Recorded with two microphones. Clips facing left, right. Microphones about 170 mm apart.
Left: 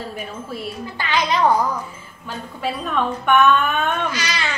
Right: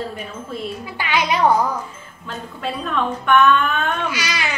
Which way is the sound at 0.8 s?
10° right (ahead or behind).